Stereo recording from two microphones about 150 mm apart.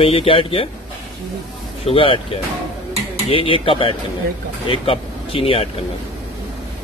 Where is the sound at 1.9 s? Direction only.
35° left (ahead or behind).